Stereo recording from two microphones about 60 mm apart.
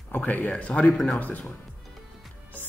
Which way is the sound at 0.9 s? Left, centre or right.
Centre.